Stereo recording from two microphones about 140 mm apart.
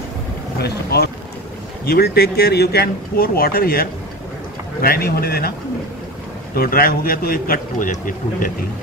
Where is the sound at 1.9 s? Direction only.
90° left.